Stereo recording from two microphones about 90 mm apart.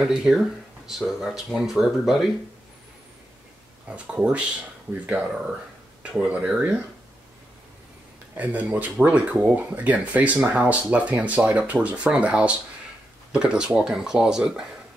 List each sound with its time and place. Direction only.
0.1 s speech: 5° right (ahead or behind)
3.8 s speech: 15° right (ahead or behind)
8.4 s speech: 15° right (ahead or behind)